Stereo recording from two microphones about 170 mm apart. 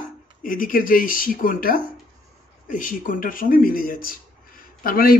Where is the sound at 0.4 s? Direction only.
55° left (ahead or behind).